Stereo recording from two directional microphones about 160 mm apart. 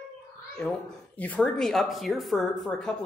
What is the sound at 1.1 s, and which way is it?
Speech, 10° left (ahead or behind).